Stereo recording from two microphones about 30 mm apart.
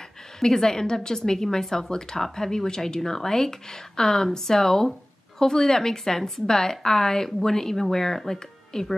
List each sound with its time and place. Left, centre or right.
0.4 s speech: centre
7.2 s speech: centre